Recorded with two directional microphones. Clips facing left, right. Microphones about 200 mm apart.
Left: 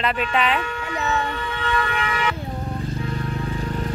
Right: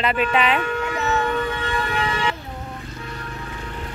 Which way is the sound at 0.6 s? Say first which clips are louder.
Right 3 dB; 50° right (ahead or behind).